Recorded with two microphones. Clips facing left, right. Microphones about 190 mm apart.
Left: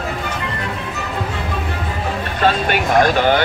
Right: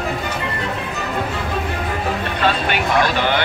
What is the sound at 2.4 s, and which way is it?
Vehicle, 45° left (ahead or behind).